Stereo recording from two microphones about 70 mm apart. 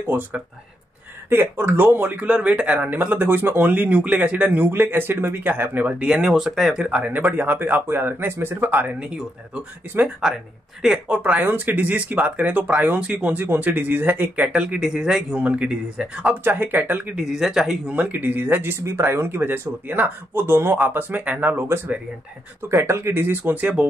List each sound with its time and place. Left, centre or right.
0.1 s speech: right
1.3 s speech: right
6.0 s a man's voice: centre
7.0 s speech: right
10.2 s a man's voice: centre
15.3 s a man's voice: centre
16.4 s speech: right
17.2 s a man's voice: centre
17.8 s speech: centre; by 20.7 s right
20.7 s speech: right
22.7 s speech: right